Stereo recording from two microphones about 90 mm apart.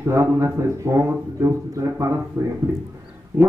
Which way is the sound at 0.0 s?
35° right (ahead or behind).